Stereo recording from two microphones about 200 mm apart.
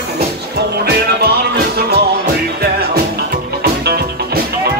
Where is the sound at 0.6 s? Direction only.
55° right (ahead or behind).